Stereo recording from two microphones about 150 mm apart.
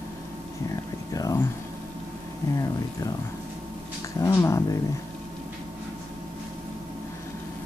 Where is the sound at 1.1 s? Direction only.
25° left (ahead or behind).